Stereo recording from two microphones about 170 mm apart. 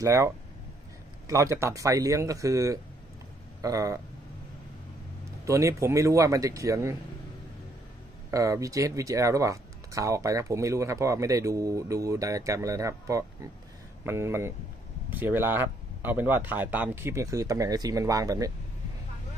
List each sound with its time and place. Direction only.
0.0 s speech: 20° right (ahead or behind)
5.4 s speech: 15° right (ahead or behind)
8.3 s speech: 20° right (ahead or behind)